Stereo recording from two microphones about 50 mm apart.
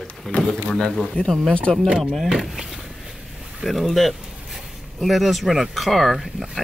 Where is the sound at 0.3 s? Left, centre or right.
Centre.